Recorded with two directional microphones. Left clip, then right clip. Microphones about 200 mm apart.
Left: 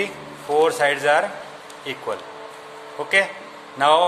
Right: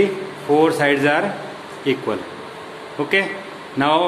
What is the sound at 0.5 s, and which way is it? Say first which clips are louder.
Speech: right 2 dB; 40° left (ahead or behind).